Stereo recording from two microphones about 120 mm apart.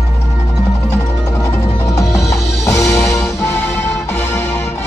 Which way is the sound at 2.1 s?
Centre (ahead or behind).